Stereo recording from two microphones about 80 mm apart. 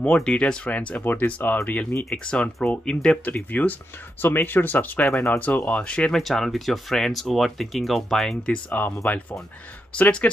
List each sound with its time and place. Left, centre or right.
0.0 s speech: centre
2.0 s speech: centre
3.3 s speech: left
5.1 s speech: left
5.7 s speech: centre
8.6 s speech: left
9.9 s speech: centre